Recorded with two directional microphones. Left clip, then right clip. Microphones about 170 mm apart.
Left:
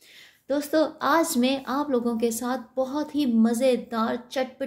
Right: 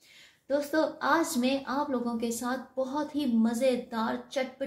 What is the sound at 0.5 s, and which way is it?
A woman's voice, 60° left (ahead or behind).